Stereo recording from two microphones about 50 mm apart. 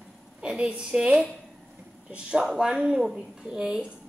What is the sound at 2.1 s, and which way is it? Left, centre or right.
A woman's voice, centre.